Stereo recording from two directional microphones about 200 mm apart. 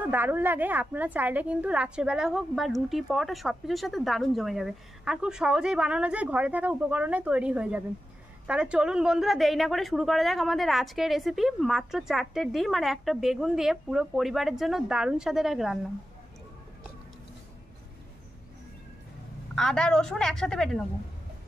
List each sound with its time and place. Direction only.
0.0 s a woman's voice: 10° right (ahead or behind)
19.5 s a woman's voice: 5° left (ahead or behind)